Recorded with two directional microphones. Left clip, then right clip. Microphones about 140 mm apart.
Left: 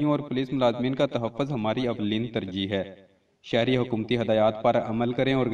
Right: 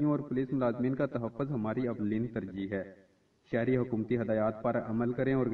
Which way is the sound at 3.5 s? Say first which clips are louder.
Left 7 dB; 40° left (ahead or behind).